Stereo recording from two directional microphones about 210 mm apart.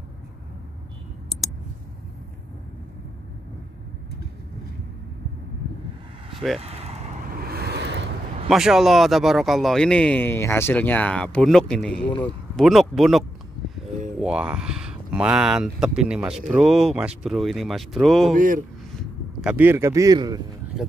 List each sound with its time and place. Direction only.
6.6 s vehicle: 30° right (ahead or behind)
7.4 s vehicle: 50° right (ahead or behind)
8.5 s speech: centre (ahead or behind)
14.2 s speech: 5° right (ahead or behind)
18.3 s a man's voice: 40° right (ahead or behind)
18.9 s speech: 5° right (ahead or behind)